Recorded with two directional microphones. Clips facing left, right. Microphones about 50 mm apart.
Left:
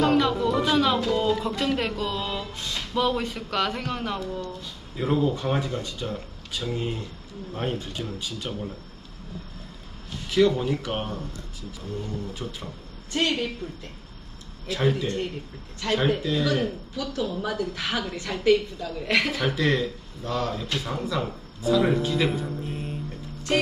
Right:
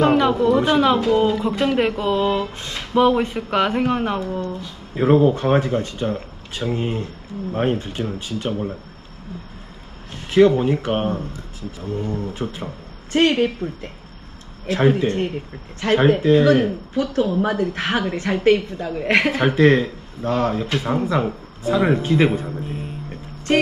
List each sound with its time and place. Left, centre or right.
0.0 s speech: right
10.3 s speech: right
21.7 s speech: centre
22.0 s speech: right
22.3 s speech: centre